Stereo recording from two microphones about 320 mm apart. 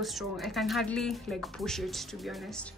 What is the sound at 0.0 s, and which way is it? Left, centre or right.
A woman's voice, centre.